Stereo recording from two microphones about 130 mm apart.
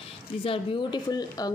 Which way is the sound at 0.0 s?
45° left (ahead or behind).